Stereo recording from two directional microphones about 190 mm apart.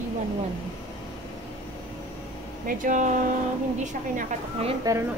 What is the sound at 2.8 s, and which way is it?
A woman's voice, 40° right (ahead or behind).